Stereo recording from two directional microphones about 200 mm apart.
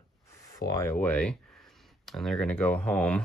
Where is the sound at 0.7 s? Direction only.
10° left (ahead or behind).